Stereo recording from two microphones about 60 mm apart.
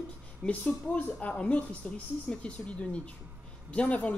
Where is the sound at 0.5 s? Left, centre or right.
Left.